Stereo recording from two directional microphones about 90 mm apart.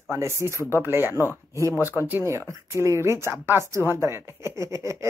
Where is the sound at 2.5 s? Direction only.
35° right (ahead or behind).